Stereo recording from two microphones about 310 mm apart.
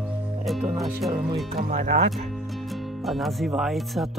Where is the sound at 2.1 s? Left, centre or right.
Centre.